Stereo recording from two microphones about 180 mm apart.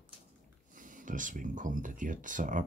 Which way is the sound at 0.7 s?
45° right (ahead or behind).